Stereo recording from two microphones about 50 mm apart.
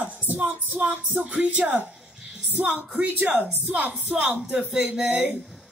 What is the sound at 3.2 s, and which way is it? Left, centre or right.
Speech, right.